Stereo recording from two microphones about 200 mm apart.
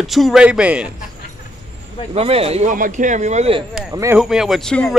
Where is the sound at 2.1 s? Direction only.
30° right (ahead or behind).